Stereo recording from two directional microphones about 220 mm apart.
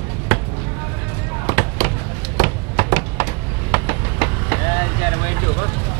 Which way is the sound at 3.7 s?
10° right (ahead or behind).